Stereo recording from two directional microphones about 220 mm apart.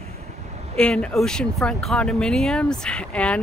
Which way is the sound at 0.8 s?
5° left (ahead or behind).